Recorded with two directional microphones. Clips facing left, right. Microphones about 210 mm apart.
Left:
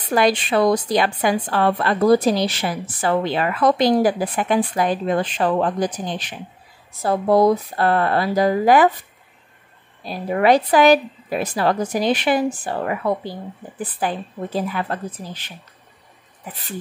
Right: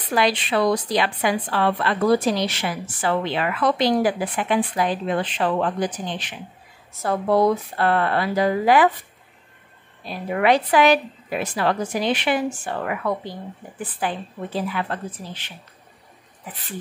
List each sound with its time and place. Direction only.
0.1 s a woman's voice: 45° left (ahead or behind)
10.0 s a woman's voice: 35° left (ahead or behind)